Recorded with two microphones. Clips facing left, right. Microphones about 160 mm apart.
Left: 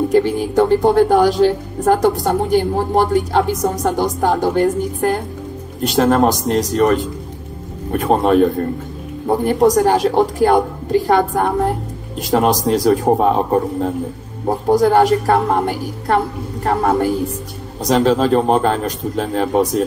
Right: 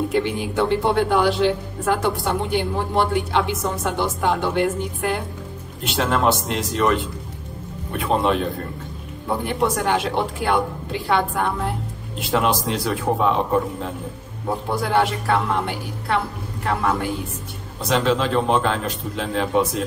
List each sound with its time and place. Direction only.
0.1 s a woman's voice: 40° left (ahead or behind)